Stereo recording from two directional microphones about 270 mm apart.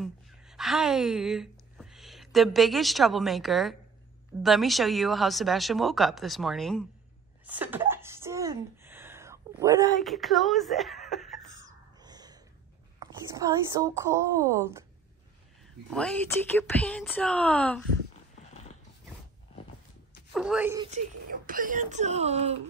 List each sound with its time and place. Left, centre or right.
0.0 s a woman's voice: centre
7.4 s a sound: centre
9.9 s speech: centre
12.0 s gasp: centre
13.0 s a woman's voice: centre
15.9 s speech: centre
18.4 s horse: left
20.3 s speech: centre
20.7 s a woman's voice: centre
21.3 s speech: right